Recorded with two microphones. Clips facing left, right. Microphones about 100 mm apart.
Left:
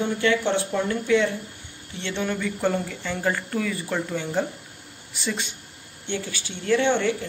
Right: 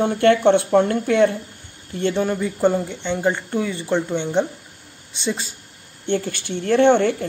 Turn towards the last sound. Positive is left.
turn(degrees=-50)  # may be behind; listen again after turning